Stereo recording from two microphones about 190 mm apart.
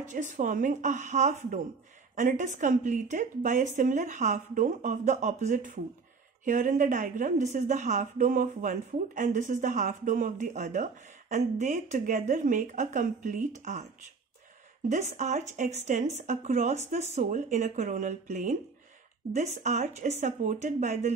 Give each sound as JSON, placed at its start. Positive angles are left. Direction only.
{"t": 0.1, "sound": "a woman's voice", "side_deg": -45}
{"t": 14.9, "sound": "a woman's voice", "side_deg": -40}